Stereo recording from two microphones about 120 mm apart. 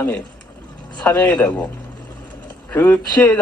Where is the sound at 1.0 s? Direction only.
10° left (ahead or behind).